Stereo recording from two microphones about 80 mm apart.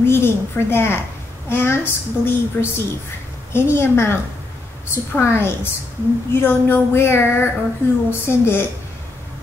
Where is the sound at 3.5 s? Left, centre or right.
Left.